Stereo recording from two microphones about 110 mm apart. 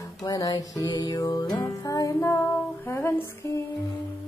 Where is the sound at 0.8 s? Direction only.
35° left (ahead or behind).